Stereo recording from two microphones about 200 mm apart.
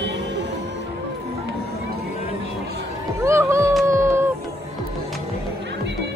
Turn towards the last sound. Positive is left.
turn(degrees=-15)  # may be behind; listen again after turning